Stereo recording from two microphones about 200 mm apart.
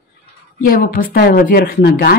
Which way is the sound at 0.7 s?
45° left (ahead or behind).